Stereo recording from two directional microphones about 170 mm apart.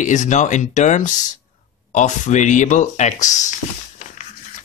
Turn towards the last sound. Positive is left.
turn(degrees=45)  # may be behind; listen again after turning